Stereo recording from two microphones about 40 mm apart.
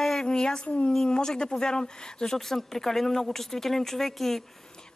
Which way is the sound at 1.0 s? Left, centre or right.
Centre.